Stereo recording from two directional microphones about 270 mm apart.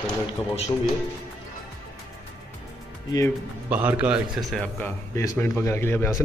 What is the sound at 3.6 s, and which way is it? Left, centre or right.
A man's voice, centre.